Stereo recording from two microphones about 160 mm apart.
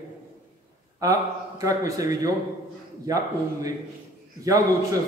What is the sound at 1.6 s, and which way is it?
Speech, 20° right (ahead or behind).